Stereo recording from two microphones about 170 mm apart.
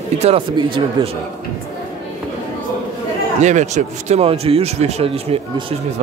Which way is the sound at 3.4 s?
45° right (ahead or behind).